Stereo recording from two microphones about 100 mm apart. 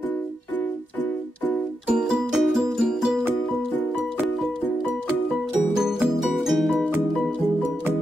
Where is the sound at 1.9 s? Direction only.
5° right (ahead or behind).